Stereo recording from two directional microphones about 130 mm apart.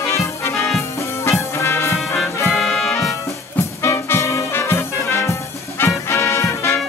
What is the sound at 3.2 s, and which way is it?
Music, 20° left (ahead or behind).